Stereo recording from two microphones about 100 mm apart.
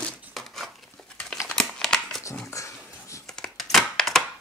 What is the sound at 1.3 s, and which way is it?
Crumpling, centre (ahead or behind).